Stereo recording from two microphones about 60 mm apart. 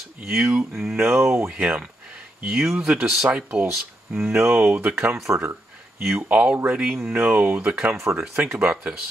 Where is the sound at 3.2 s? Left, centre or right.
Right.